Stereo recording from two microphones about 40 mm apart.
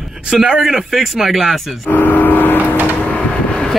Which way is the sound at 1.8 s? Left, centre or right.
Left.